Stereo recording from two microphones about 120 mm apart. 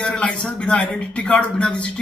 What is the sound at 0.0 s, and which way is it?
Speech, 10° left (ahead or behind).